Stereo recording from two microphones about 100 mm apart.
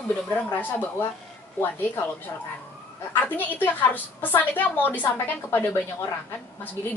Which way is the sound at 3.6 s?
20° left (ahead or behind).